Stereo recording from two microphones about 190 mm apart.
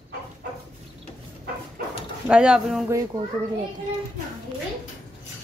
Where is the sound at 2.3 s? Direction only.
5° right (ahead or behind).